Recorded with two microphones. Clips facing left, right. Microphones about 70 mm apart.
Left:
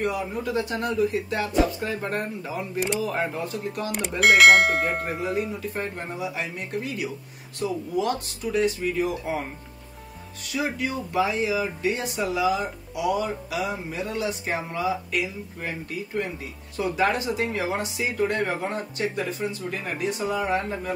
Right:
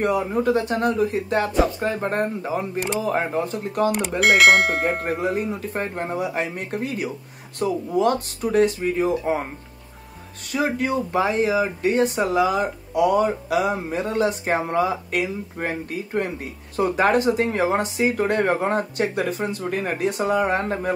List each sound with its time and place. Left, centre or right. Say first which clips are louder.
0.0 s speech: right 6 dB; right
2.0 s speech: right 5 dB; right
4.2 s speech: even; centre
5.2 s speech: right 3 dB; right
8.8 s speech: right 5 dB; right
10.5 s speech: right 5 dB; right